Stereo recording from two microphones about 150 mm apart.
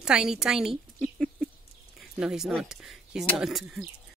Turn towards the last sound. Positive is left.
turn(degrees=0)  # may be behind; listen again after turning